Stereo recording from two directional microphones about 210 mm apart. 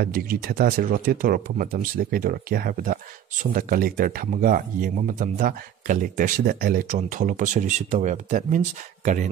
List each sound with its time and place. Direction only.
0.0 s speech: 45° right (ahead or behind)